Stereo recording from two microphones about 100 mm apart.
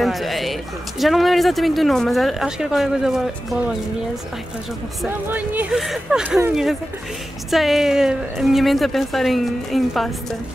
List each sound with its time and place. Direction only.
0.0 s speech: centre (ahead or behind)
5.3 s speech: 15° right (ahead or behind)
5.7 s speech: 5° right (ahead or behind)